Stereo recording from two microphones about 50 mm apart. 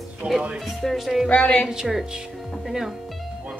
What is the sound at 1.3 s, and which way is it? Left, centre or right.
Speech, left.